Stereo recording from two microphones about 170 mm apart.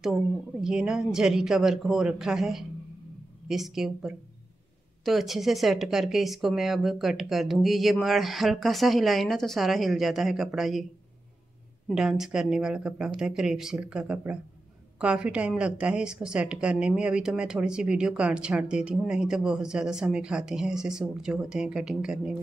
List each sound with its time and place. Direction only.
0.0 s a woman's voice: 5° right (ahead or behind)
11.9 s a woman's voice: 5° right (ahead or behind)